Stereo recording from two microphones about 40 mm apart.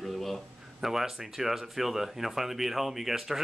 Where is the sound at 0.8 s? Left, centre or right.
Centre.